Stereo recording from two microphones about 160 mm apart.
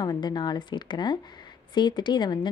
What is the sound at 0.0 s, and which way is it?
A woman's voice, 25° left (ahead or behind).